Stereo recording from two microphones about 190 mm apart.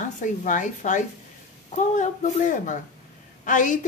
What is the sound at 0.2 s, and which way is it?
A woman's voice, 40° left (ahead or behind).